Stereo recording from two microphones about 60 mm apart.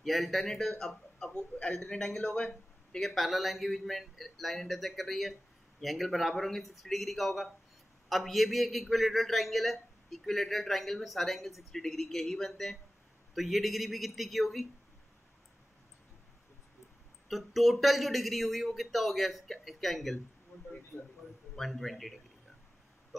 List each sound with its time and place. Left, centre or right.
0.0 s a man's voice: centre
1.3 s a man's voice: centre
3.0 s a man's voice: centre
17.3 s a man's voice: centre
21.5 s a man's voice: centre